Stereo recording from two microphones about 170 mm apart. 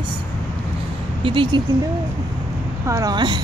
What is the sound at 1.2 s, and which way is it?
Speech, 30° right (ahead or behind).